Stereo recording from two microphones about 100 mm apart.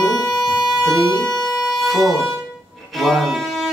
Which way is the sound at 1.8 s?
Centre (ahead or behind).